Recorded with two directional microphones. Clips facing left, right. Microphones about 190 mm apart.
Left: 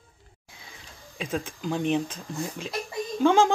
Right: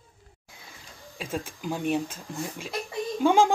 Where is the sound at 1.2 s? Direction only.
5° right (ahead or behind).